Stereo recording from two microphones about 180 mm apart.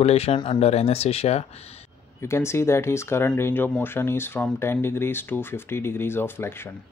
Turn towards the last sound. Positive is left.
turn(degrees=15)  # may be behind; listen again after turning